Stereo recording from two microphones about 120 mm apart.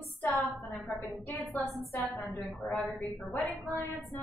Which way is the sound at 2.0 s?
Centre (ahead or behind).